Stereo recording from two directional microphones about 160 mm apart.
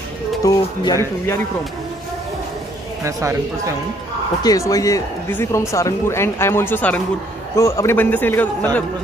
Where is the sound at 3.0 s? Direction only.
20° right (ahead or behind).